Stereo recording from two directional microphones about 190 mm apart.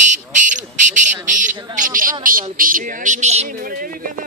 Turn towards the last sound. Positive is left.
turn(degrees=-45)  # may be behind; listen again after turning